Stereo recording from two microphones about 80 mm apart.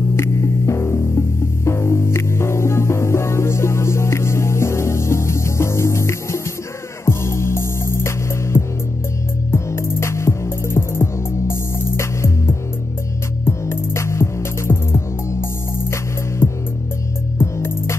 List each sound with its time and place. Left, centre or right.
0.1 s music: left